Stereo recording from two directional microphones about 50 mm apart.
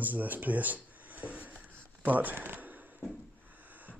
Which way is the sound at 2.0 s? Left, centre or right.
Right.